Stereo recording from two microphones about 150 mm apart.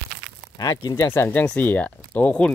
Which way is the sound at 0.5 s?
25° left (ahead or behind).